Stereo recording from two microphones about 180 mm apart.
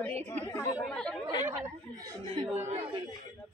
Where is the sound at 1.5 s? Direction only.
15° right (ahead or behind).